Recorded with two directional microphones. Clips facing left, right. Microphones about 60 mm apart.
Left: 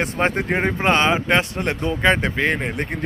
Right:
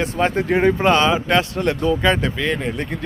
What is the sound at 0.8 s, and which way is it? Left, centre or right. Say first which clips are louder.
A man's voice: right 2 dB; left.